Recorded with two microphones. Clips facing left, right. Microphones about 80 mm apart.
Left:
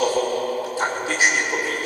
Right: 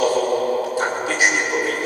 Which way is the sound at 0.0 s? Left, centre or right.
Centre.